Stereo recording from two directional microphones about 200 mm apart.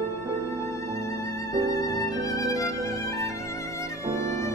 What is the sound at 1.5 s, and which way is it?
Violin, 15° left (ahead or behind).